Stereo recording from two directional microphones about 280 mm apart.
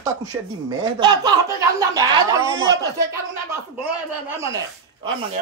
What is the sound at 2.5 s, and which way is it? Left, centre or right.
Speech, right.